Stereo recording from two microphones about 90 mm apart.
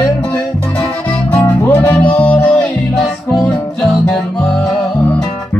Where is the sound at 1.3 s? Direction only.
20° left (ahead or behind); by 3.5 s 5° left (ahead or behind).